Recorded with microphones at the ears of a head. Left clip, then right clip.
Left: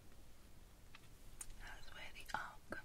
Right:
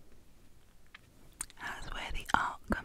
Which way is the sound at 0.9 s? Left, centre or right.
Right.